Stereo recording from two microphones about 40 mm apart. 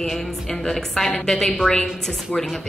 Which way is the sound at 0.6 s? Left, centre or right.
Centre.